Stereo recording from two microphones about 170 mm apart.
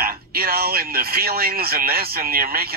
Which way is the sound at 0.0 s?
60° right (ahead or behind).